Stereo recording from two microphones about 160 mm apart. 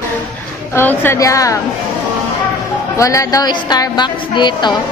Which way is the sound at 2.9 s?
20° left (ahead or behind).